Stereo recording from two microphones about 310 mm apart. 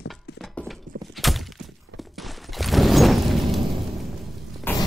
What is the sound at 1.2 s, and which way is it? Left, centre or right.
Thunk, centre.